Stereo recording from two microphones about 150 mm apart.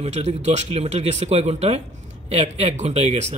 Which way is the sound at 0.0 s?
45° right (ahead or behind).